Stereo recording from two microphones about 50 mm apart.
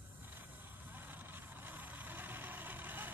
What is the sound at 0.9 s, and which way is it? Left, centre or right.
Vehicle, right.